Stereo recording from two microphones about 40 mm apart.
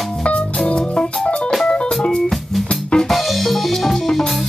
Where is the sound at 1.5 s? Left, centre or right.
Centre.